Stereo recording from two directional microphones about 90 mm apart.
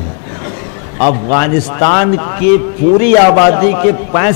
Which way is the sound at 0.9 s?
15° left (ahead or behind).